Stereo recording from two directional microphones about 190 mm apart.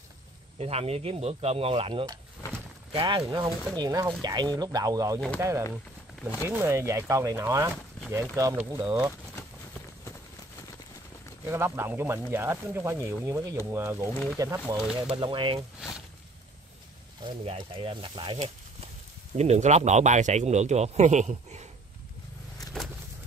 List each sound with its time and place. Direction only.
0.6 s speech: 35° right (ahead or behind); by 9.1 s 10° right (ahead or behind)
11.4 s speech: 10° right (ahead or behind)
15.0 s speech: 25° right (ahead or behind)
17.2 s speech: 25° right (ahead or behind)